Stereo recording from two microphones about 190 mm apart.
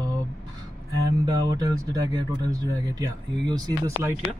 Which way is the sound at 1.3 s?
20° right (ahead or behind).